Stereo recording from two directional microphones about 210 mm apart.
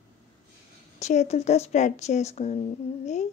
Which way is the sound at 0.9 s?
35° left (ahead or behind).